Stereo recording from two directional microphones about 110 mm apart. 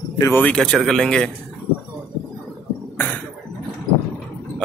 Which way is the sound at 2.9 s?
15° left (ahead or behind).